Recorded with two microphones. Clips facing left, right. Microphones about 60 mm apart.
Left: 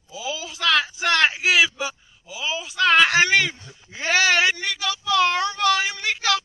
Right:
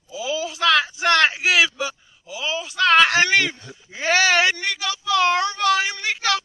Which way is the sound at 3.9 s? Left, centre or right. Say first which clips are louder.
Right 2 dB; centre.